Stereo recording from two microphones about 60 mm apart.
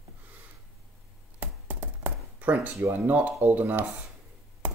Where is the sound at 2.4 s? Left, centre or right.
Right.